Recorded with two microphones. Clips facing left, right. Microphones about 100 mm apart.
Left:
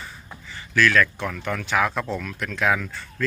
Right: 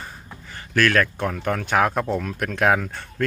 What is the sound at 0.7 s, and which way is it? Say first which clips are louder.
Speech: even; 45° right (ahead or behind).